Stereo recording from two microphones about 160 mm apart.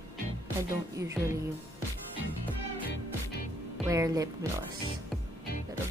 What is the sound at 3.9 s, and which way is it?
Speech, 20° right (ahead or behind).